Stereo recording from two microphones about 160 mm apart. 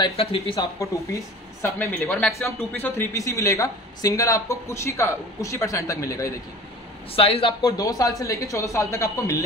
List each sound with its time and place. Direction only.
0.0 s speech: 35° left (ahead or behind)
0.6 s speech: 20° left (ahead or behind)
2.0 s a man's voice: 5° left (ahead or behind)
7.2 s speech: 35° left (ahead or behind)
7.6 s speech: 20° left (ahead or behind)